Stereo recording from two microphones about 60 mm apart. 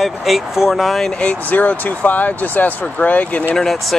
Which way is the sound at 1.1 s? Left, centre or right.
Left.